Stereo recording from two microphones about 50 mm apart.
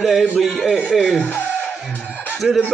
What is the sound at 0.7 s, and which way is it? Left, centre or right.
Speech, centre.